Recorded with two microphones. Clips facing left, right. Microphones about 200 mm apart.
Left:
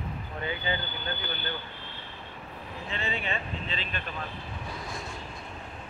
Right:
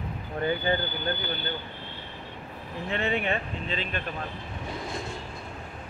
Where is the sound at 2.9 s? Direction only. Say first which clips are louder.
Right 6 dB; 60° right (ahead or behind).